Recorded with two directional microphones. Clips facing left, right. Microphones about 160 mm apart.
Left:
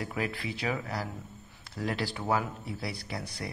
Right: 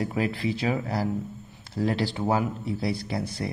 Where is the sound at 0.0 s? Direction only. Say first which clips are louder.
Right 7 dB; 25° right (ahead or behind).